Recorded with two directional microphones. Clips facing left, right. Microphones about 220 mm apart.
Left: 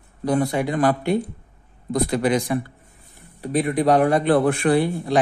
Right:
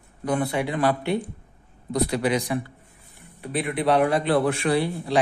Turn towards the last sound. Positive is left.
turn(degrees=55)  # may be behind; listen again after turning